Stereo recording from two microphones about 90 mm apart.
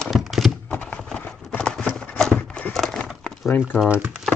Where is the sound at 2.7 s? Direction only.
5° left (ahead or behind).